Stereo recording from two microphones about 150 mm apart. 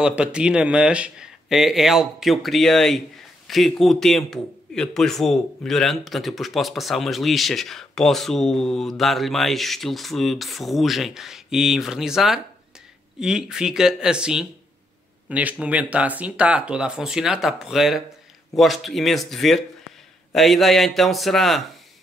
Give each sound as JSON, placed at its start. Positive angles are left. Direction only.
{"t": 0.0, "sound": "a man's voice", "side_deg": -5}